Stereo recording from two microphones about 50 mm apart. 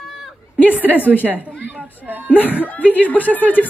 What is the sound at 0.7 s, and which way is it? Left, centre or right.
Speech, right.